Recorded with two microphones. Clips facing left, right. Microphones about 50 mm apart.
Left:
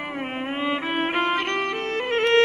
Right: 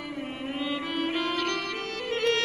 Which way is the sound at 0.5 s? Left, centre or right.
Left.